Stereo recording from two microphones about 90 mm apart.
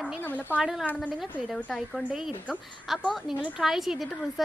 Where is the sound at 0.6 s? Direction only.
5° right (ahead or behind).